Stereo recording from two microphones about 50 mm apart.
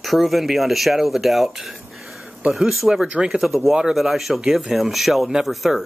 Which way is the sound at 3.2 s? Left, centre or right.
Centre.